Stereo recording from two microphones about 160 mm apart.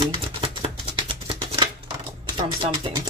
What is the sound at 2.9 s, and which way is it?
Speech, 35° right (ahead or behind).